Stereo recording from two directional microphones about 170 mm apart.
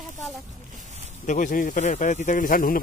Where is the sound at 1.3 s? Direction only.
50° left (ahead or behind).